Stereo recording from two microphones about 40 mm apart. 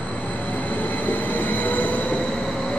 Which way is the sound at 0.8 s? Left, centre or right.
Left.